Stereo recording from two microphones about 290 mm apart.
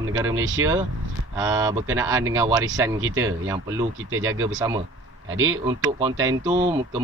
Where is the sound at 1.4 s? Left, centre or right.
Centre.